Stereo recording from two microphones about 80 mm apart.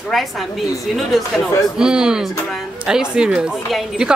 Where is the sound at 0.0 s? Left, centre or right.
Centre.